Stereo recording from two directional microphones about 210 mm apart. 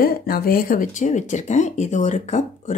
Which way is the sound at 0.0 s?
45° left (ahead or behind).